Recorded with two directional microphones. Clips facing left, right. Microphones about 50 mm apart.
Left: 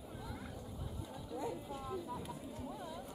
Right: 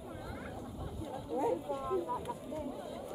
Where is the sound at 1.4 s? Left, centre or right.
Right.